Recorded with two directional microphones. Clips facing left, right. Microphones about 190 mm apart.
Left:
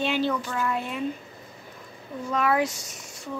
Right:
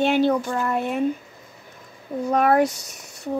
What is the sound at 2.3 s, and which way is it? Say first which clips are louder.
Speech: right 6 dB; 50° right (ahead or behind).